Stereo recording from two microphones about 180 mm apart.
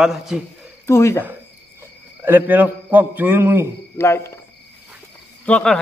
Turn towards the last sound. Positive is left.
turn(degrees=5)  # may be behind; listen again after turning